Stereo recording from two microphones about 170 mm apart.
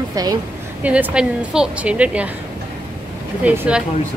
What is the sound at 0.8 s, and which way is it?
A woman's voice, 10° right (ahead or behind).